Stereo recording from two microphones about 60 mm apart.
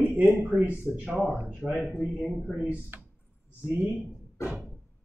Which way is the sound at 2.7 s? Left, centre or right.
Right.